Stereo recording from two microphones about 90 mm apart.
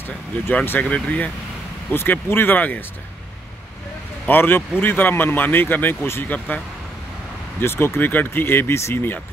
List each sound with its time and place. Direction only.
0.0 s speech: 20° left (ahead or behind)
4.3 s speech: 20° left (ahead or behind)
7.6 s speech: 25° left (ahead or behind)